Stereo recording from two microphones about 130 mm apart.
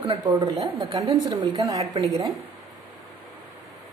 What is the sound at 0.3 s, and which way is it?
A woman's voice, 30° right (ahead or behind).